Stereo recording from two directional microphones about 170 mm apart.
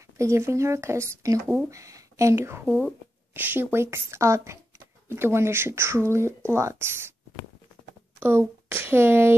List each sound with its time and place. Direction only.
0.2 s speech: 15° right (ahead or behind)
8.2 s speech: 15° right (ahead or behind)